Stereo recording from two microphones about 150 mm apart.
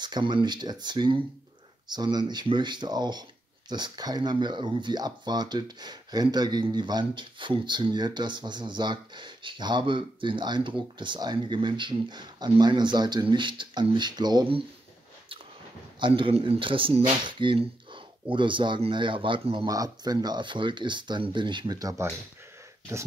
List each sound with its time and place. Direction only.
0.0 s speech: 30° right (ahead or behind)
16.0 s speech: 35° right (ahead or behind)